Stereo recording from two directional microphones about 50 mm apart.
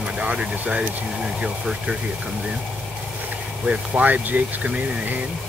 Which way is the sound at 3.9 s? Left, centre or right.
Right.